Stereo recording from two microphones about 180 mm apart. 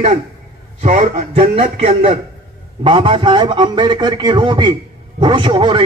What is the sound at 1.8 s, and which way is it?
A man's voice, 35° right (ahead or behind).